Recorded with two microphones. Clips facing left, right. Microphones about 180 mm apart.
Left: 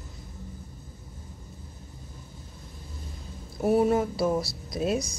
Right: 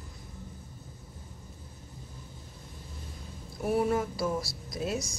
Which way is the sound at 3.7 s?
25° left (ahead or behind).